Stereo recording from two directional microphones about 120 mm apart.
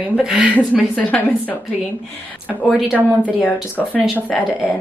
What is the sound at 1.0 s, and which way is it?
Speech, 15° left (ahead or behind).